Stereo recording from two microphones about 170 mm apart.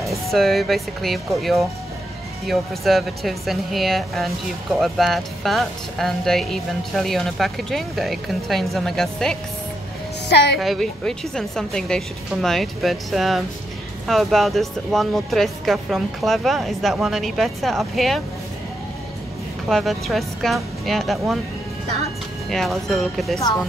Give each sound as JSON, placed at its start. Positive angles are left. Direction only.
{"t": 0.0, "sound": "speech", "side_deg": 0}
{"t": 10.2, "sound": "a woman's voice", "side_deg": 75}
{"t": 10.6, "sound": "speech", "side_deg": 0}
{"t": 19.7, "sound": "speech", "side_deg": 0}
{"t": 22.5, "sound": "speech", "side_deg": 0}